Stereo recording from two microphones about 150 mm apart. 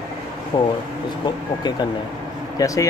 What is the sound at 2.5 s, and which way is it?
Speech, 20° left (ahead or behind).